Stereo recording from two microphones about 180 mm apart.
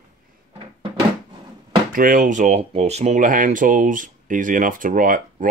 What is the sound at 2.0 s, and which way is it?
Speech, 50° right (ahead or behind).